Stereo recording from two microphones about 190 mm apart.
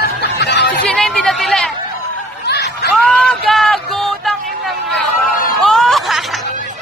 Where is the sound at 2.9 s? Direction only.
Centre (ahead or behind).